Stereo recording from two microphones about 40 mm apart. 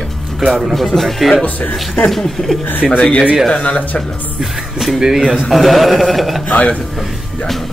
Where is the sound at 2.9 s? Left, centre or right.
Left.